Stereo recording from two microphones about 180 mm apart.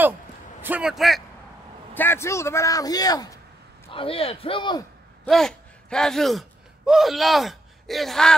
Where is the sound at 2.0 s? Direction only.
15° left (ahead or behind).